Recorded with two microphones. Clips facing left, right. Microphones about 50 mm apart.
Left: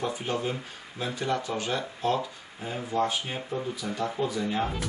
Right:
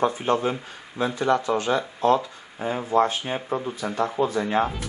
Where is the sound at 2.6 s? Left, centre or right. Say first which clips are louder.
Right 7 dB; right.